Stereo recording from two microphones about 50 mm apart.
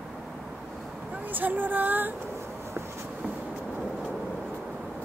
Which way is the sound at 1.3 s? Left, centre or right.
Right.